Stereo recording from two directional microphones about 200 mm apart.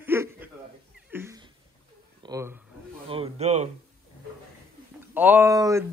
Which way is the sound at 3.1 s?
30° right (ahead or behind).